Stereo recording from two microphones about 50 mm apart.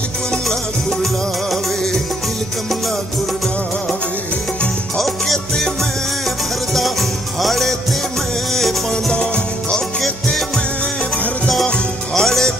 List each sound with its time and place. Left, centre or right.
0.3 s music: centre
4.9 s music: centre
9.1 s music: centre
12.1 s music: centre